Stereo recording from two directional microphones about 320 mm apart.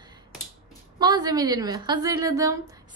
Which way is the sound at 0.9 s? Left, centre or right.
Centre.